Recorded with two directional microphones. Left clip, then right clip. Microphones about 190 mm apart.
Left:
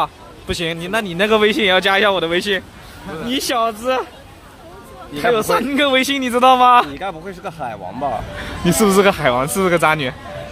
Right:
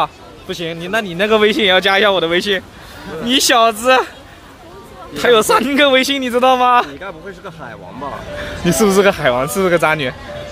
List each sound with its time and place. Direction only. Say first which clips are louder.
0.0 s a man's voice: right 2 dB; 5° left (ahead or behind)
3.3 s speech: right 7 dB; 15° right (ahead or behind)
5.1 s a man's voice: right 5 dB; 15° right (ahead or behind); by 7.0 s centre (ahead or behind)
7.0 s a man's voice: left 3 dB; 50° left (ahead or behind)
8.4 s a man's voice: right 4 dB; centre (ahead or behind)